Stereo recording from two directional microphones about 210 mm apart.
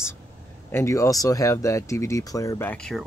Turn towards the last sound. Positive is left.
turn(degrees=5)  # may be behind; listen again after turning